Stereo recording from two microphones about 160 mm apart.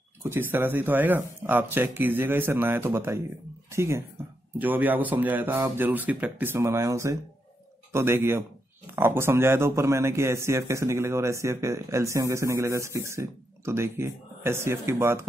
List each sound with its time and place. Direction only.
0.2 s a man's voice: 15° right (ahead or behind)